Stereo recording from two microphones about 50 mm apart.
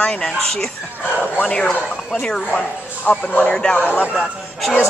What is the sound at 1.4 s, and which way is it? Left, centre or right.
Speech, centre.